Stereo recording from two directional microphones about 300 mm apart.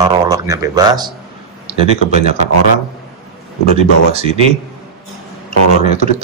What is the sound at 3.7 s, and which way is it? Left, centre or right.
Speech, right.